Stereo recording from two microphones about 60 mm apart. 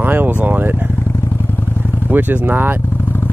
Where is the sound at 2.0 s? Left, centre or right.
Right.